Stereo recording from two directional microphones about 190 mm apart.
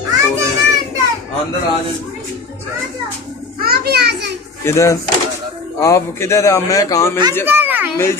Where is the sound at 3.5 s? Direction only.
55° right (ahead or behind).